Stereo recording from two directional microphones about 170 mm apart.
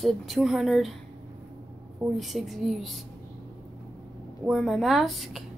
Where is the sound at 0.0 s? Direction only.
Centre (ahead or behind).